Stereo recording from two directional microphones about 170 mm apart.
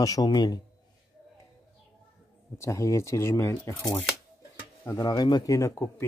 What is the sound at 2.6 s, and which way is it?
Speech, 15° left (ahead or behind).